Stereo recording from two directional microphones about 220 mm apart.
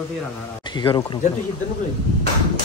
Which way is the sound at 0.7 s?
20° left (ahead or behind).